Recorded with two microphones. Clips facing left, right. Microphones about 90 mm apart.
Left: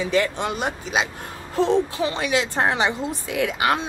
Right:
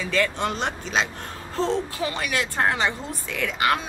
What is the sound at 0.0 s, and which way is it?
Speech, 20° left (ahead or behind).